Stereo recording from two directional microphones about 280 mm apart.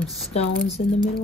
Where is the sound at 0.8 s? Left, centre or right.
Left.